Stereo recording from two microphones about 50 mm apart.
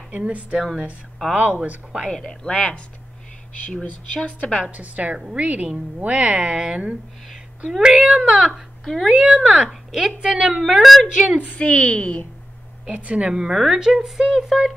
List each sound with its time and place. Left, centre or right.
0.1 s speech: right
2.0 s speech: centre
4.1 s a woman's voice: left
4.6 s a woman's voice: right
10.8 s a woman's voice: centre
11.1 s speech: centre
11.4 s a woman's voice: left
12.9 s speech: right
13.4 s a woman's voice: centre